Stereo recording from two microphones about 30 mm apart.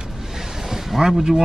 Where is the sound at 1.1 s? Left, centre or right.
Right.